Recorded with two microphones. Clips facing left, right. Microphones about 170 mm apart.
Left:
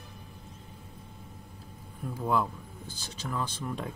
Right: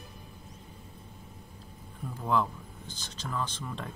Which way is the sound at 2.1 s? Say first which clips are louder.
Even; 10° left (ahead or behind).